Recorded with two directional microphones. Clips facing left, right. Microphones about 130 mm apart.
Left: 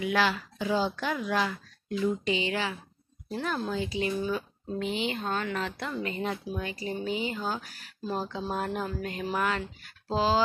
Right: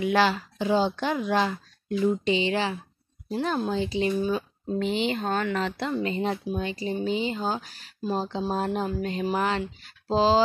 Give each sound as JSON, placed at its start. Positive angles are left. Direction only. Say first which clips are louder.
{"t": 0.0, "sound": "speech", "louder": "right 4 dB", "side_deg": -30}
{"t": 5.1, "sound": "speech", "louder": "right 4 dB", "side_deg": -50}
{"t": 5.6, "sound": "a woman's voice", "louder": "right 5 dB", "side_deg": -75}
{"t": 6.0, "sound": "speech", "louder": "right 5 dB", "side_deg": -25}